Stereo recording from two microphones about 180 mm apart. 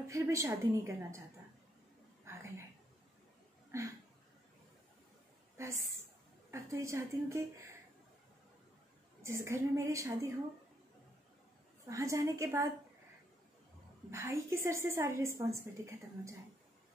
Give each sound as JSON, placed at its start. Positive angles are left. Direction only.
{"t": 0.1, "sound": "a woman's voice", "side_deg": -15}
{"t": 2.3, "sound": "a sound", "side_deg": -15}
{"t": 3.7, "sound": "a woman's voice", "side_deg": -15}
{"t": 5.6, "sound": "a woman's voice", "side_deg": -15}
{"t": 9.2, "sound": "a woman's voice", "side_deg": -15}
{"t": 11.9, "sound": "a woman's voice", "side_deg": -15}
{"t": 14.1, "sound": "a woman's voice", "side_deg": -15}